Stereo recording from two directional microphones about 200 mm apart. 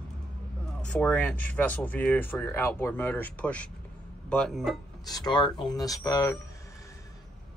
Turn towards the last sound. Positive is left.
turn(degrees=15)  # may be behind; listen again after turning